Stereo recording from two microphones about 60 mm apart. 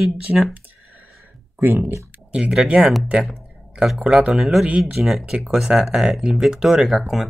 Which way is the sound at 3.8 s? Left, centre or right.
Centre.